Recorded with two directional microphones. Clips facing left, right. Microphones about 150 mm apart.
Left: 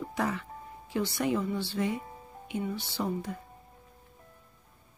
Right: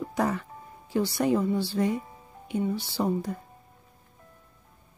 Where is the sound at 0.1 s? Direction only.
40° right (ahead or behind).